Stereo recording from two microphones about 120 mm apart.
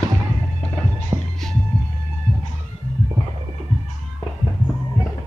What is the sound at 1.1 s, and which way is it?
Music, 25° right (ahead or behind).